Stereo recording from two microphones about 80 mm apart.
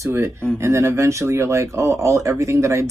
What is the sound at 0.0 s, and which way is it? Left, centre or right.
Speech, right.